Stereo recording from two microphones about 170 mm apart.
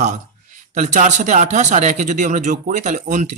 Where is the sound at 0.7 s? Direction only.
45° right (ahead or behind).